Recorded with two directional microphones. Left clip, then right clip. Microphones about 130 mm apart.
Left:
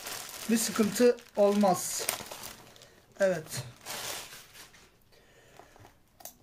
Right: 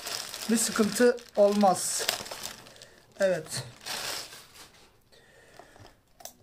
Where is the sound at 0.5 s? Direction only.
25° left (ahead or behind).